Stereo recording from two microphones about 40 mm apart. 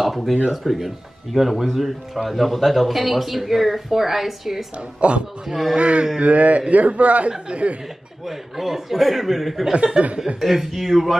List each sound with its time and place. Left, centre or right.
0.0 s a sound: centre
0.5 s speech: centre
4.7 s a woman's voice: right
5.5 s speech: centre
5.8 s a woman's voice: right
8.3 s speech: centre
10.0 s a woman's voice: right
10.4 s speech: centre